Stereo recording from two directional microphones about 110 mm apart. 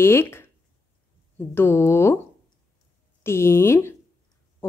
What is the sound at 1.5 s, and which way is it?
Speech, 20° left (ahead or behind).